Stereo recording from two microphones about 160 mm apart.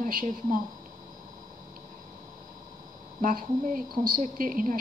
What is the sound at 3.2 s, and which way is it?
A woman's voice, 60° right (ahead or behind).